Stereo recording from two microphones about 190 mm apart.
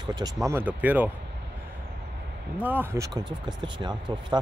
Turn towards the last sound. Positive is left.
turn(degrees=-25)  # may be behind; listen again after turning